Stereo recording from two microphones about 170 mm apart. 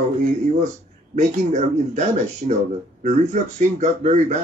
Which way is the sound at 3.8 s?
45° right (ahead or behind).